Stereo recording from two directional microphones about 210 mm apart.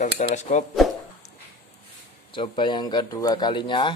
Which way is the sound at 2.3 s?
25° left (ahead or behind).